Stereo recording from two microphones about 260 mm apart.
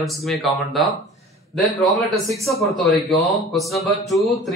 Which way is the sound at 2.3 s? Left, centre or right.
Centre.